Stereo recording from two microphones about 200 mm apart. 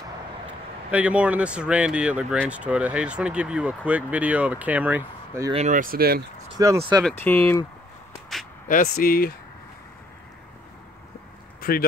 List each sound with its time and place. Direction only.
0.9 s speech: 5° right (ahead or behind)
5.5 s speech: 35° right (ahead or behind)
6.6 s speech: 15° right (ahead or behind)
7.0 s speech: 5° left (ahead or behind)
8.3 s a sound: centre (ahead or behind)
8.6 s speech: 45° left (ahead or behind)
11.6 s speech: 45° left (ahead or behind)